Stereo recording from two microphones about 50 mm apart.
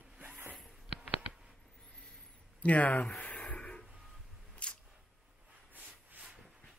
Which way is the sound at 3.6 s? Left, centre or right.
Centre.